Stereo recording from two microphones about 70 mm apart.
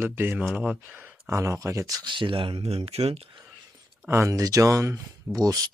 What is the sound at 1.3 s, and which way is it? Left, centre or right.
Speech, right.